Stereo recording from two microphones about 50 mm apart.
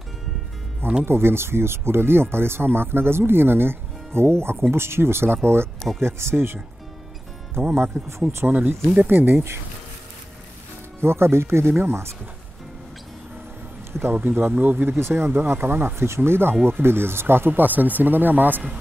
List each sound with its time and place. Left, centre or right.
1.0 s speech: right
7.7 s speech: right
11.0 s speech: right
14.1 s speech: right
15.0 s speech: right